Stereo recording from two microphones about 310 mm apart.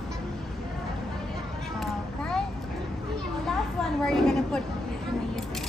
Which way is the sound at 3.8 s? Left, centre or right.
Centre.